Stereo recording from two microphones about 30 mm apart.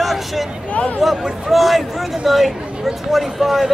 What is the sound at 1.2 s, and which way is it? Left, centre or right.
A man's voice, centre.